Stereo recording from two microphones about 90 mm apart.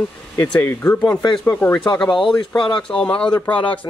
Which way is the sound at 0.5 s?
25° left (ahead or behind).